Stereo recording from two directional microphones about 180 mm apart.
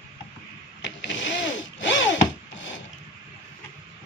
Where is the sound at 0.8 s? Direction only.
90° left.